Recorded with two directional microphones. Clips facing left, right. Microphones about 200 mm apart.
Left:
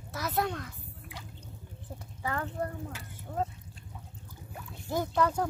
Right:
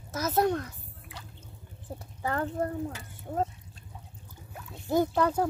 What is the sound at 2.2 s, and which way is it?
Speech, 40° right (ahead or behind).